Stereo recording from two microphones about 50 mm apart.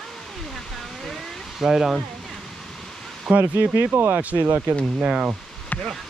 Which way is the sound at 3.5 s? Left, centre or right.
Right.